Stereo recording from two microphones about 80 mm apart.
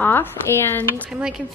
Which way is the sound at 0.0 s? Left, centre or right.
Left.